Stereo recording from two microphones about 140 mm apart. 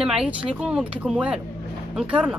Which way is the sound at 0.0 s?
5° right (ahead or behind).